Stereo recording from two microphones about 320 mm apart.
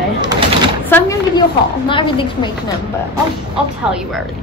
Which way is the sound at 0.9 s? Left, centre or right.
Centre.